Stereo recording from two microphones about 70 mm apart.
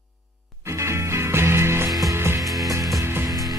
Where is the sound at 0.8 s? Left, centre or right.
Right.